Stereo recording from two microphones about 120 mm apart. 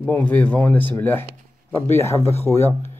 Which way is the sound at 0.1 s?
15° left (ahead or behind).